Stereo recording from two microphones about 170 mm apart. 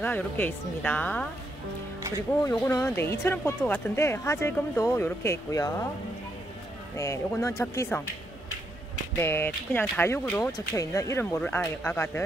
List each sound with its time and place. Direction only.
0.0 s speech: 10° left (ahead or behind)
2.4 s speech: 15° left (ahead or behind)
7.0 s speech: 15° left (ahead or behind)
9.2 s speech: 15° left (ahead or behind)